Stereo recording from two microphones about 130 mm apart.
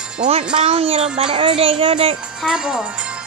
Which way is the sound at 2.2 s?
5° right (ahead or behind).